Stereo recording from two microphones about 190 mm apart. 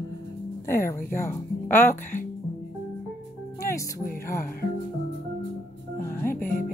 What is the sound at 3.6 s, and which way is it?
Speech, 15° left (ahead or behind).